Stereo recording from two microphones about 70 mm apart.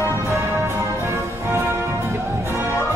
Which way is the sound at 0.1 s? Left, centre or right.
Right.